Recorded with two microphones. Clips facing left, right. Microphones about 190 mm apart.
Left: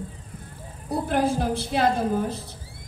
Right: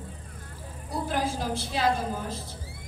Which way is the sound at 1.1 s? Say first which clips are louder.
Left 6 dB; 55° left (ahead or behind).